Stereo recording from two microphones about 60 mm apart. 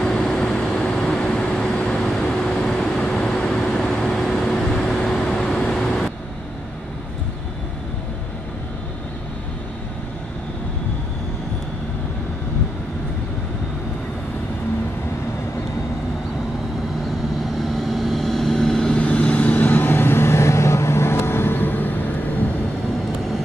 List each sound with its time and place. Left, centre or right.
0.0 s vehicle: centre
17.7 s vehicle: centre
18.9 s vehicle: left